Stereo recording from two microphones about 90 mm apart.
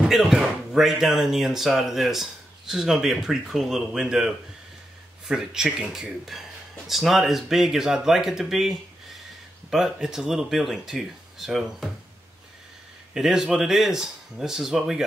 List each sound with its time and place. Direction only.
0.0 s speech: 5° right (ahead or behind)
5.3 s speech: 5° right (ahead or behind)
13.1 s speech: 5° right (ahead or behind)